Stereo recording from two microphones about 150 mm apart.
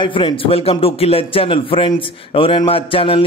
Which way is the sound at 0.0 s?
35° left (ahead or behind).